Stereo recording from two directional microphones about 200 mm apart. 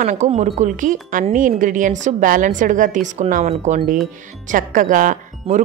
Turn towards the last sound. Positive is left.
turn(degrees=-40)  # may be behind; listen again after turning